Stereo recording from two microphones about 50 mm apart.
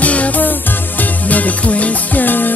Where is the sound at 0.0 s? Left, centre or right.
Left.